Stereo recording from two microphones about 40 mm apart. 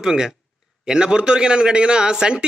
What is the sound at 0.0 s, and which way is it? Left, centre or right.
A man's voice, centre.